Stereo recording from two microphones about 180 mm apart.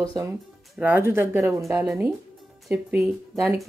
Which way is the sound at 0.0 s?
20° right (ahead or behind).